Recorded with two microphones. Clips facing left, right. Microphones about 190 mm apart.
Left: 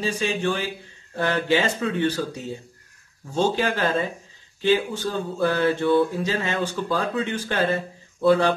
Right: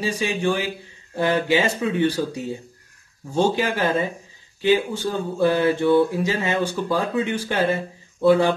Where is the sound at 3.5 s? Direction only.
15° right (ahead or behind).